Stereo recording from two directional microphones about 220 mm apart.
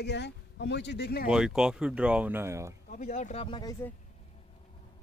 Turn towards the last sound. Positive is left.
turn(degrees=15)  # may be behind; listen again after turning